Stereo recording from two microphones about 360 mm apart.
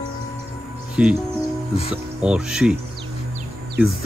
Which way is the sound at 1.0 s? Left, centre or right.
Centre.